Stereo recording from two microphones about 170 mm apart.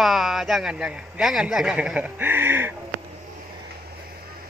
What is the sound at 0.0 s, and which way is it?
Speech, centre (ahead or behind).